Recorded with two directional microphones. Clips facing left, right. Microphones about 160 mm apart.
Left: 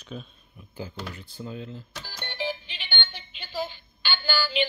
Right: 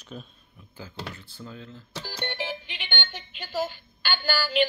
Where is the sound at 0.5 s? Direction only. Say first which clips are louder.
Left 3 dB; 15° left (ahead or behind).